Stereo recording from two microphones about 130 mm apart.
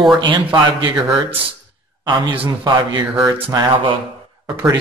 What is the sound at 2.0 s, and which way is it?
Speech, 40° right (ahead or behind).